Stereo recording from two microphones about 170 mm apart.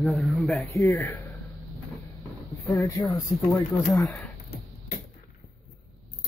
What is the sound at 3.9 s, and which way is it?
Speech, centre (ahead or behind).